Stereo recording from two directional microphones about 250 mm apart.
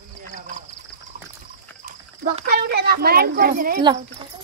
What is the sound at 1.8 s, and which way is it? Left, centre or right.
Speech, right.